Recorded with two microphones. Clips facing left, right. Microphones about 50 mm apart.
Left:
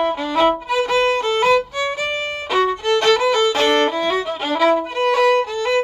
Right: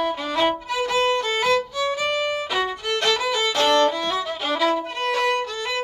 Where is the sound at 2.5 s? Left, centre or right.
Centre.